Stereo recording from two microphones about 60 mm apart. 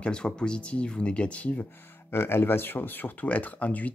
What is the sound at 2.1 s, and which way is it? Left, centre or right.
Speech, left.